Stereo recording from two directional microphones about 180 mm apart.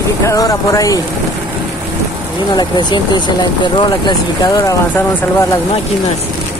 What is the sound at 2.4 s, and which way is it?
Speech, 25° left (ahead or behind).